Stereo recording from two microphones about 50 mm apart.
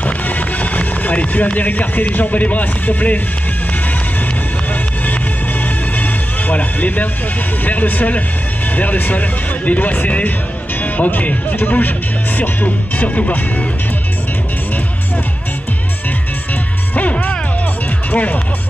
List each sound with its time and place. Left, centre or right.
0.0 s speech: left
5.9 s music: left
7.6 s speech: left
16.9 s music: left
18.1 s speech: left